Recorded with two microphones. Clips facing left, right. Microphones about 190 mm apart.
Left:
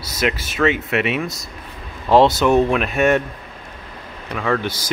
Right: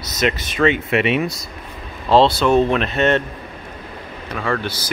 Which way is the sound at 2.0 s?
15° left (ahead or behind).